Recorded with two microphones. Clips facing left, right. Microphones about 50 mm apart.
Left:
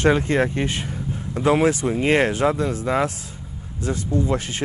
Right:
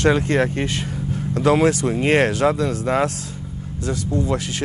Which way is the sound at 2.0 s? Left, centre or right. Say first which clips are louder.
Right 1 dB; right.